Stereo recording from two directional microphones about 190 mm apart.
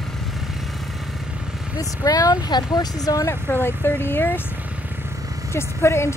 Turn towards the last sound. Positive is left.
turn(degrees=15)  # may be behind; listen again after turning